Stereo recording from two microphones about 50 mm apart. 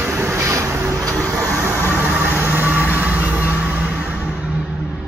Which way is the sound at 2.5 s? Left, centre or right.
Right.